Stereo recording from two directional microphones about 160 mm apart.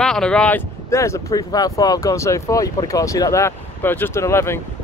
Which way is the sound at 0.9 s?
20° left (ahead or behind).